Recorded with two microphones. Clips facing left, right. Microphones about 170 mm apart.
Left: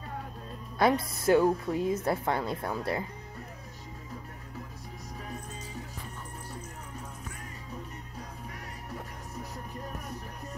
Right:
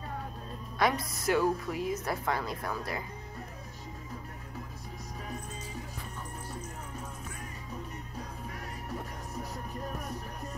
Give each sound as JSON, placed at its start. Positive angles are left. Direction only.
{"t": 0.7, "sound": "a woman's voice", "side_deg": 25}